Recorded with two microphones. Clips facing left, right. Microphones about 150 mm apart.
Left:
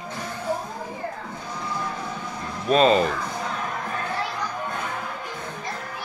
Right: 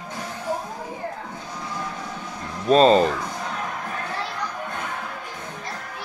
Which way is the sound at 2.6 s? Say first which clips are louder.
Right 3 dB; 35° right (ahead or behind).